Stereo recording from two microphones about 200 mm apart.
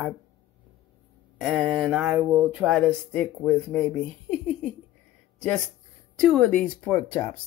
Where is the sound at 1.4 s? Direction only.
5° right (ahead or behind).